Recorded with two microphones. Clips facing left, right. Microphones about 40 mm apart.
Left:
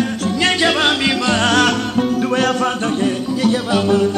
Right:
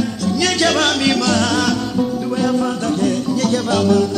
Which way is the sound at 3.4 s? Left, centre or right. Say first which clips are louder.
Left 2 dB; left.